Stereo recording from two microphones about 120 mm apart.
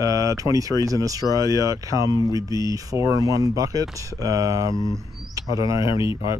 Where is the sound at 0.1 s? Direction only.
30° right (ahead or behind).